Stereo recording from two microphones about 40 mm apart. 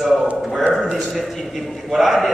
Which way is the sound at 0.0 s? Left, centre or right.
Centre.